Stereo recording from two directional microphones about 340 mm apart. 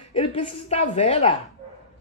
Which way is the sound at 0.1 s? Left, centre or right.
Centre.